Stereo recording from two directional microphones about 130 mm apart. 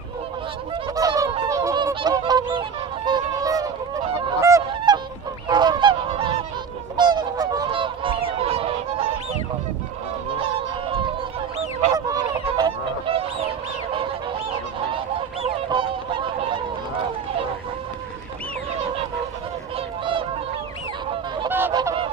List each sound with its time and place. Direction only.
0.9 s honk: 30° right (ahead or behind)
2.0 s goose: 30° right (ahead or behind)
3.1 s honk: 30° right (ahead or behind)
5.5 s goose: 35° right (ahead or behind)
7.0 s goose: 35° right (ahead or behind)
10.4 s honk: 45° right (ahead or behind)
11.9 s goose: 30° right (ahead or behind)
15.7 s honk: 40° right (ahead or behind)
21.5 s goose: 15° right (ahead or behind)